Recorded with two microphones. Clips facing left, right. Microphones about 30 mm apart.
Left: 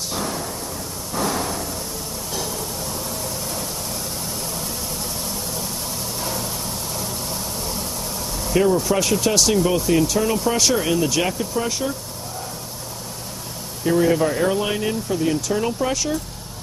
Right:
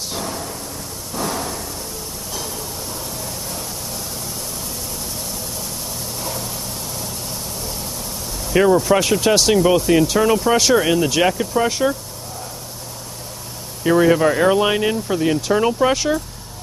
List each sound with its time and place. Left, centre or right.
1.2 s a sound: centre
6.2 s vehicle: centre
8.5 s speech: right
13.8 s speech: right